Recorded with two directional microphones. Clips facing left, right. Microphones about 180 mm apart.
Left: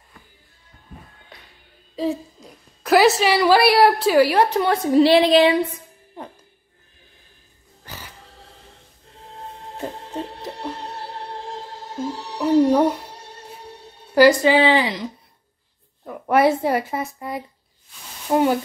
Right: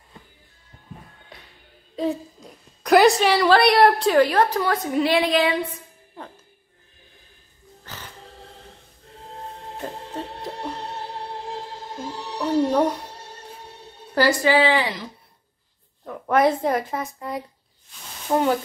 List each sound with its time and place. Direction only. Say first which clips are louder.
2.0 s a woman's voice: left 1 dB; centre (ahead or behind)
4.6 s a woman's voice: left 6 dB; 30° left (ahead or behind)
6.2 s music: left 3 dB; 15° left (ahead or behind)
7.8 s a sound: left 1 dB; 10° left (ahead or behind)
12.4 s music: left 4 dB; 10° left (ahead or behind)
14.1 s a woman's voice: left 5 dB; 20° left (ahead or behind)
16.1 s speech: left 2 dB; 10° left (ahead or behind)